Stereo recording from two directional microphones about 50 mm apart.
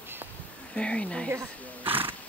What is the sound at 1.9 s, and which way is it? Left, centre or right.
Speech, right.